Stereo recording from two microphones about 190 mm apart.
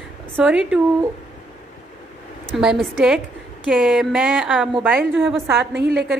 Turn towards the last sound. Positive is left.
turn(degrees=-65)  # may be behind; listen again after turning